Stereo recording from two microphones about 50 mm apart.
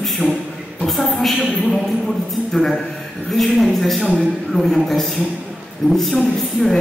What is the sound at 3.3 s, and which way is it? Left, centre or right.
A woman's voice, centre.